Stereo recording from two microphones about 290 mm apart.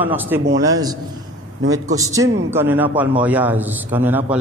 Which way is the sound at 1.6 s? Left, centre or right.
Right.